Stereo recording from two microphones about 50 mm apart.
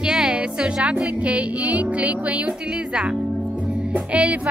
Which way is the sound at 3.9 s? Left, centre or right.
Right.